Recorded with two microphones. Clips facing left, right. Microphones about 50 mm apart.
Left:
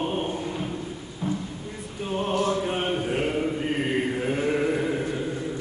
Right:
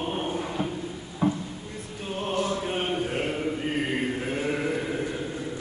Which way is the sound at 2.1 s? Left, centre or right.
Centre.